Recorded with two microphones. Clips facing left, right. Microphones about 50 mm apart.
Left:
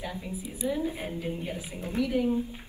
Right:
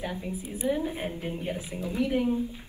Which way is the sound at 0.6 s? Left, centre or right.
Right.